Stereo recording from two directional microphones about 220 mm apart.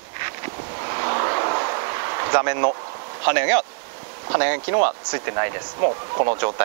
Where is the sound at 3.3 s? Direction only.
15° right (ahead or behind).